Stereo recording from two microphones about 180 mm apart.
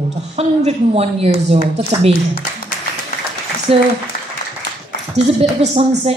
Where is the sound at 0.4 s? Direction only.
35° right (ahead or behind).